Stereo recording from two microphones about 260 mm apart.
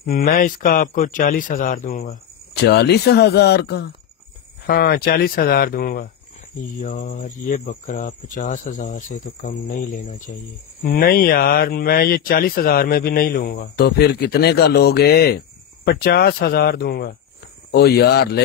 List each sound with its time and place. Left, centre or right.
0.0 s speech: left